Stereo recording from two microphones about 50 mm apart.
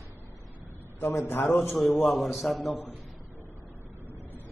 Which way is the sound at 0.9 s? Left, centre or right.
Left.